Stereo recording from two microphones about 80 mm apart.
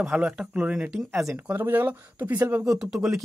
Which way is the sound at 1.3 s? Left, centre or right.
Right.